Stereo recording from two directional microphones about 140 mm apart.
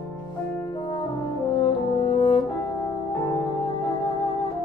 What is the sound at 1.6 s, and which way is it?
French horn, 40° left (ahead or behind).